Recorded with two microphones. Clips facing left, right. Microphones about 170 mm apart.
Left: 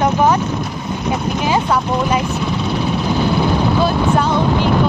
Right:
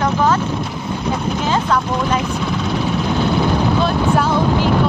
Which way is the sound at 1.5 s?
10° left (ahead or behind).